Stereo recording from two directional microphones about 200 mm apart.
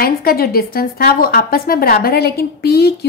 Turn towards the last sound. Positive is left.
turn(degrees=55)  # may be behind; listen again after turning